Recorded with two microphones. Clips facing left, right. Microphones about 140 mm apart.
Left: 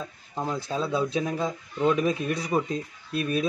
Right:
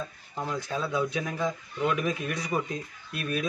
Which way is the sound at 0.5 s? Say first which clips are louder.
Left 3 dB; 30° left (ahead or behind).